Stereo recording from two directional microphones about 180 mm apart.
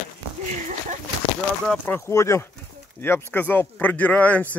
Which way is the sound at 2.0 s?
15° left (ahead or behind).